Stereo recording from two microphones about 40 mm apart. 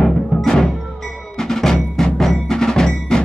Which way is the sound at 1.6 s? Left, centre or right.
Centre.